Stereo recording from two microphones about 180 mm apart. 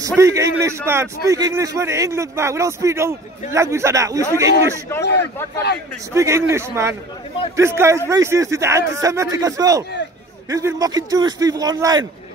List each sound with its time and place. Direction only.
0.0 s a man's voice: 15° right (ahead or behind)
5.0 s speech: 70° left (ahead or behind)
6.1 s a man's voice: 15° right (ahead or behind)